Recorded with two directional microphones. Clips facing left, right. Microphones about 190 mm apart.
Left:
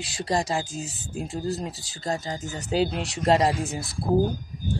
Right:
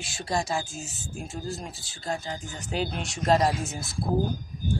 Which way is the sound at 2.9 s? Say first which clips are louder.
Left 2 dB; 30° left (ahead or behind).